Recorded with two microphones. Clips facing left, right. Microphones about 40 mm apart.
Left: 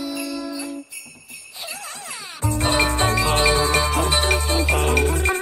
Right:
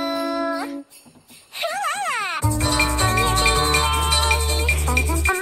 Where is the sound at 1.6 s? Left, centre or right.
Right.